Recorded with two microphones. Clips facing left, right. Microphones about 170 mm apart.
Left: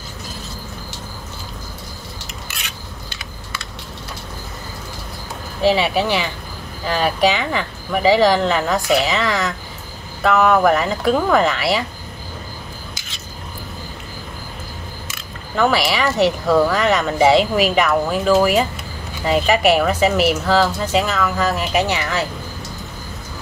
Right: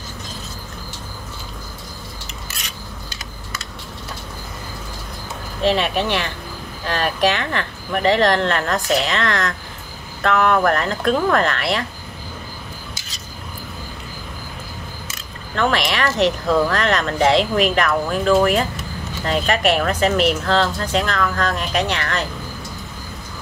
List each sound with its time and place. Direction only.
2.5 s rub: 40° right (ahead or behind)
5.6 s speech: 5° left (ahead or behind)
15.5 s speech: 5° left (ahead or behind)